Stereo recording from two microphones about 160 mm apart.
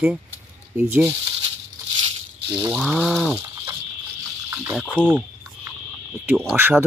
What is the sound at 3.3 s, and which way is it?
Bird, 20° right (ahead or behind).